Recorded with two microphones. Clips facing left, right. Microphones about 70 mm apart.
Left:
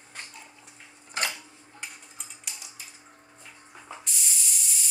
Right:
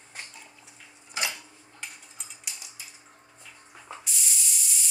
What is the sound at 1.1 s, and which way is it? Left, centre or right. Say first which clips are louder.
Dishes: left 1 dB; left.